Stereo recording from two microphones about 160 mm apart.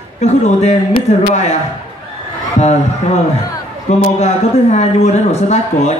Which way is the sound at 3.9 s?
45° left (ahead or behind).